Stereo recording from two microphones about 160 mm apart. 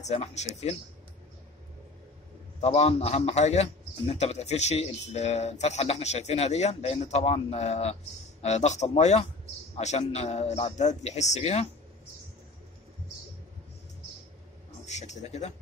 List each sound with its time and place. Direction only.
0.0 s speech: 45° left (ahead or behind)
2.6 s speech: 40° left (ahead or behind)
14.9 s a man's voice: 45° left (ahead or behind)